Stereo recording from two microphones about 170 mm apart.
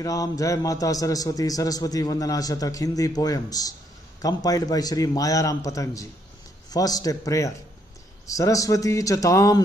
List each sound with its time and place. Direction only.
0.0 s a man's voice: 20° left (ahead or behind)